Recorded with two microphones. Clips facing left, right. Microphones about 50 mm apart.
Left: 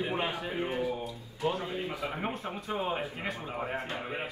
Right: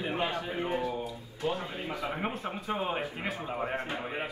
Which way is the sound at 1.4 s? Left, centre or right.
Centre.